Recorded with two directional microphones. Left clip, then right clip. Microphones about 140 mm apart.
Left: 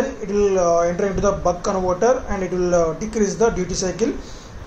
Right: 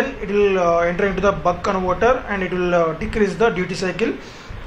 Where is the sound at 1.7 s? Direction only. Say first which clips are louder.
Even; 10° right (ahead or behind).